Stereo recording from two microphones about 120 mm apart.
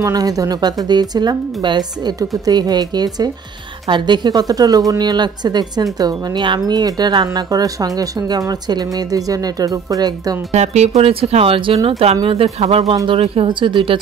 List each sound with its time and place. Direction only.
0.0 s a woman's voice: 30° right (ahead or behind)
10.5 s speech: 70° right (ahead or behind)
11.0 s speech: 55° right (ahead or behind)